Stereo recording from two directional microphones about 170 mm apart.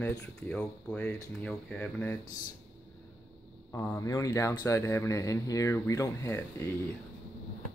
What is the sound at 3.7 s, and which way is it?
Speech, 15° left (ahead or behind).